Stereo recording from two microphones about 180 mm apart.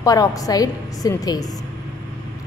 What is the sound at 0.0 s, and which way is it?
A woman's voice, 20° left (ahead or behind).